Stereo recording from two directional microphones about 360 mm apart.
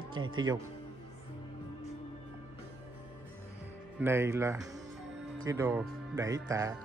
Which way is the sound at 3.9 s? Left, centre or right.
Centre.